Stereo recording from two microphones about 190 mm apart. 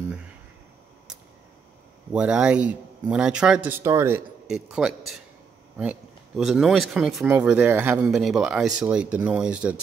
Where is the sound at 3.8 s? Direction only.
15° right (ahead or behind).